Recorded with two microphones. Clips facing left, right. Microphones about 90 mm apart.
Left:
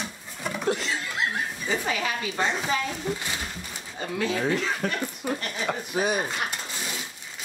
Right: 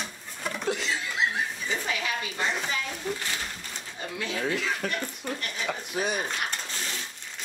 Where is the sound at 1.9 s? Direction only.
35° left (ahead or behind).